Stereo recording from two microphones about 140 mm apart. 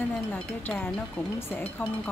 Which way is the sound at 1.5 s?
10° left (ahead or behind).